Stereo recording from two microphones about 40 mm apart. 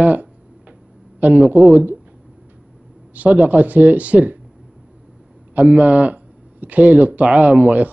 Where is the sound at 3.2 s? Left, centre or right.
Right.